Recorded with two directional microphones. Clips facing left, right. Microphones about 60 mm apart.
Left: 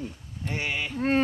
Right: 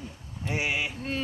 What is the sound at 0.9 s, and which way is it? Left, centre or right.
Speech, left.